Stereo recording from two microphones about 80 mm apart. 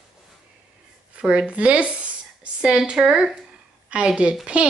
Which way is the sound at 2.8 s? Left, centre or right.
Centre.